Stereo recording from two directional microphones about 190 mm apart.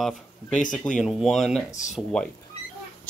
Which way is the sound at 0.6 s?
40° left (ahead or behind).